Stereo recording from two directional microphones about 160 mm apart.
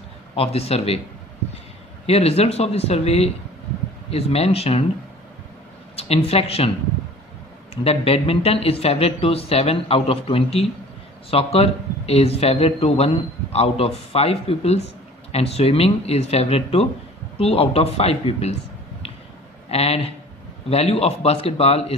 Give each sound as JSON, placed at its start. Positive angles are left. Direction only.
{"t": 0.4, "sound": "a man's voice", "side_deg": 40}
{"t": 2.0, "sound": "a man's voice", "side_deg": 40}
{"t": 5.9, "sound": "speech", "side_deg": 40}
{"t": 7.7, "sound": "a man's voice", "side_deg": 40}
{"t": 19.7, "sound": "a man's voice", "side_deg": 40}